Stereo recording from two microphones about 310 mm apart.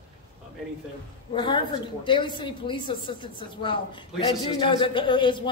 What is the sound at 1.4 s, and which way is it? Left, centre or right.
A woman's voice, centre.